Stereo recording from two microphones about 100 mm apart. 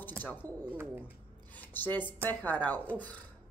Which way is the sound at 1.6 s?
20° left (ahead or behind).